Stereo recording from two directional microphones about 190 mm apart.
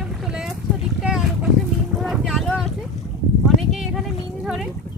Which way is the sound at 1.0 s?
5° right (ahead or behind).